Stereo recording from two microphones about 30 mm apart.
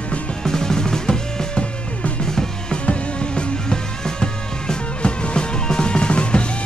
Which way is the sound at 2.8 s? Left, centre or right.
Left.